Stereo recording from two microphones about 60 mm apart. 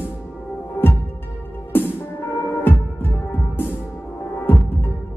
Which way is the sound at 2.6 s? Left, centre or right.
Left.